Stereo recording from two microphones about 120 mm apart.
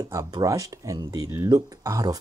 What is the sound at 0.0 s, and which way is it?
Speech, 30° right (ahead or behind).